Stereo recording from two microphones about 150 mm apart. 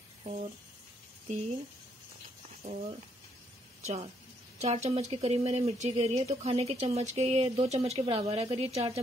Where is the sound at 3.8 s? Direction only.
40° right (ahead or behind).